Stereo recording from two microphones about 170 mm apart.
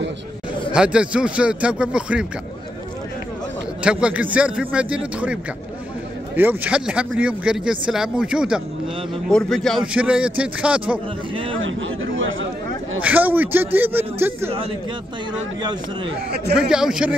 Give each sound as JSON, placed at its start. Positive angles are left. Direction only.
{"t": 0.7, "sound": "a man's voice", "side_deg": -5}
{"t": 3.8, "sound": "a man's voice", "side_deg": -5}
{"t": 13.0, "sound": "a man's voice", "side_deg": -10}
{"t": 15.6, "sound": "speech", "side_deg": -25}
{"t": 16.5, "sound": "speech", "side_deg": -5}